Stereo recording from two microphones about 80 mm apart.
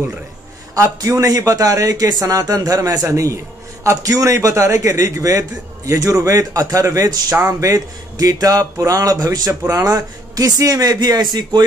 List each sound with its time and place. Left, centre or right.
0.8 s speech: right